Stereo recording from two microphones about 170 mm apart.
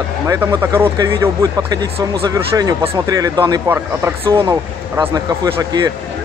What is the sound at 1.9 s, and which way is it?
Speech, 35° right (ahead or behind).